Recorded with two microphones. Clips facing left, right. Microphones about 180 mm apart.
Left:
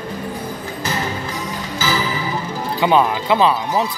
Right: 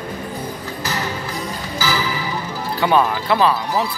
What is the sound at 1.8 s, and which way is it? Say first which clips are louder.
Speech: left 1 dB; 20° left (ahead or behind).